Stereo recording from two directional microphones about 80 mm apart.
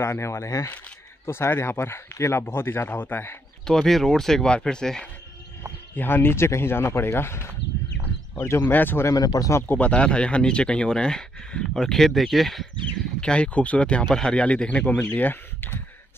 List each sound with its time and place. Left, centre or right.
0.0 s speech: left
3.6 s speech: centre
5.9 s speech: left
9.1 s speech: left
9.5 s speech: left
9.8 s speech: centre
12.8 s speech: centre